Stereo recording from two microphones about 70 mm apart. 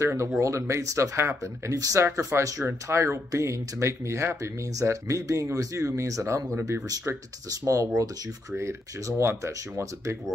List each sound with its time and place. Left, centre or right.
0.0 s speech: right